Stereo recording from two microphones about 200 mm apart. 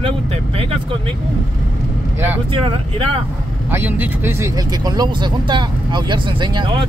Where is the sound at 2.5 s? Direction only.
30° right (ahead or behind).